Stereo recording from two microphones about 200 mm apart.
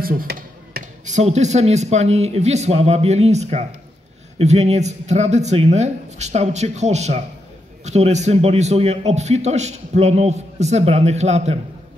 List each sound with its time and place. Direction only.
0.0 s a man's voice: 45° right (ahead or behind)